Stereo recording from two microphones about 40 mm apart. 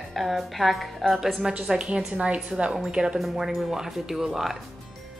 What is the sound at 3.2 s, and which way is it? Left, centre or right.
Speech, centre.